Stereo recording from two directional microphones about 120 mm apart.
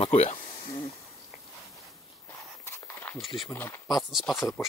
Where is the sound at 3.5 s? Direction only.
20° left (ahead or behind).